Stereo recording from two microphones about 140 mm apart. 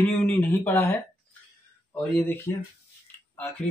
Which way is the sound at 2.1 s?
20° left (ahead or behind).